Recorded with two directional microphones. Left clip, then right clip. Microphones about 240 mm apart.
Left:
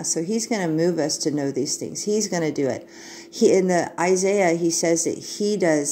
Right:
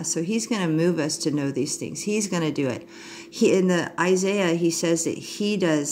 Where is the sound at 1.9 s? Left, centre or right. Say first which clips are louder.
Left 5 dB; centre.